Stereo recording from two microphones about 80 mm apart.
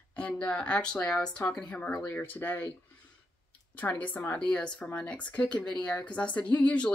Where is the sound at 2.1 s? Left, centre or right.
Left.